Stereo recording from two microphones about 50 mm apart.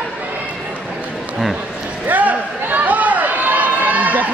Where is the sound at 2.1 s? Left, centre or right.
Right.